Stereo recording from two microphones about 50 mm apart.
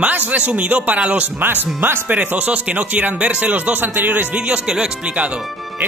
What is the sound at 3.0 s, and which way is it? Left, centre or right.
Speech, right.